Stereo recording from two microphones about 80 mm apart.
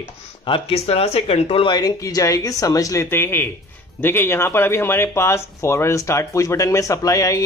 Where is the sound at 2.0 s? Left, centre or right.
Left.